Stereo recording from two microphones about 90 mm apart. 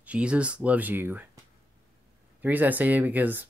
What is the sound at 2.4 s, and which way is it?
Speech, 20° right (ahead or behind).